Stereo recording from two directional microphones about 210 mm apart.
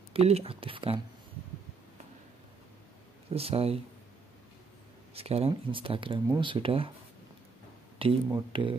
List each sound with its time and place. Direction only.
0.1 s speech: 30° right (ahead or behind)
3.3 s speech: 30° right (ahead or behind)
5.1 s speech: 30° right (ahead or behind)
8.0 s speech: 25° right (ahead or behind)